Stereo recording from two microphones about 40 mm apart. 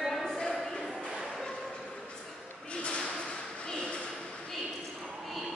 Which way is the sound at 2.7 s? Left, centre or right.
Left.